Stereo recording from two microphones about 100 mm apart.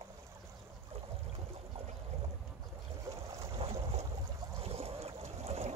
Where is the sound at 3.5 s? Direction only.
90° right.